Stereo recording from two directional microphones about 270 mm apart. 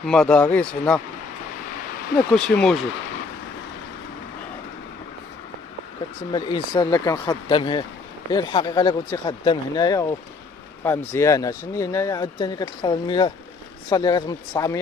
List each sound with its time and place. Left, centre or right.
0.0 s speech: centre
2.1 s speech: centre
6.3 s speech: centre